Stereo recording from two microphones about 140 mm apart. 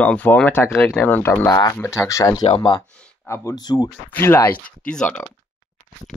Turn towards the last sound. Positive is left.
turn(degrees=5)  # may be behind; listen again after turning